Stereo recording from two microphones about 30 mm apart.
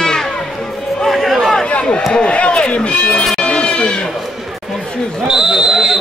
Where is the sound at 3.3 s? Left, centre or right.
Left.